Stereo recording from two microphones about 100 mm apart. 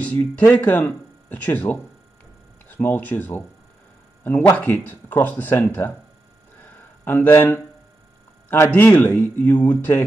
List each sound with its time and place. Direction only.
0.0 s a man's voice: 20° left (ahead or behind)
6.6 s a sound: 20° left (ahead or behind)
8.5 s a man's voice: 25° left (ahead or behind)